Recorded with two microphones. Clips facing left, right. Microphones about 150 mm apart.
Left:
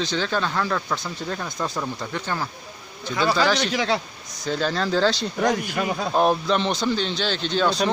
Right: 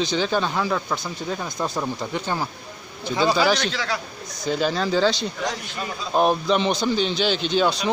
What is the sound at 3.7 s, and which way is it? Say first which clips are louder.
Speech: left 4 dB; 25° left (ahead or behind).